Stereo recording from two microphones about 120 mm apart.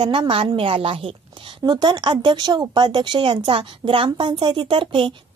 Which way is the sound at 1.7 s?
35° right (ahead or behind).